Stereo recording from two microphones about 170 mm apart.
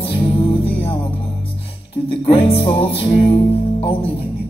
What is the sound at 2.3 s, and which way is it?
Music, 35° left (ahead or behind).